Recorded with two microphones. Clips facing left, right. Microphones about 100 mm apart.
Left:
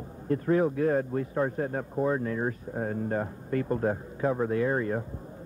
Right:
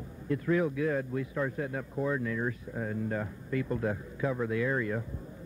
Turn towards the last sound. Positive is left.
turn(degrees=40)  # may be behind; listen again after turning